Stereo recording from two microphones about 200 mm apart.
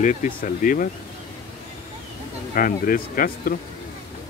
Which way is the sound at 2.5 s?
45° left (ahead or behind).